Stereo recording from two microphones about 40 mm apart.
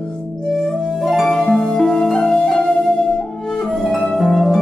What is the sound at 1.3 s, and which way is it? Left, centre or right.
Harp, centre.